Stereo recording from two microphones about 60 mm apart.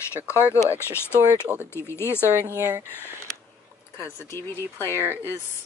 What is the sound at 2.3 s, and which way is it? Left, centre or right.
Speech, right.